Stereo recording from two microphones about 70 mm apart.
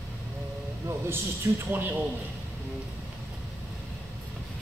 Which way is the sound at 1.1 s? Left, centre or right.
Right.